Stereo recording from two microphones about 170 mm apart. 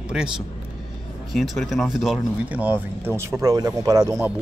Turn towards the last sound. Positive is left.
turn(degrees=-20)  # may be behind; listen again after turning